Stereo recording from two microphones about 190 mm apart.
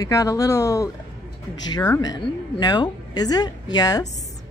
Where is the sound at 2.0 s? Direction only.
20° left (ahead or behind).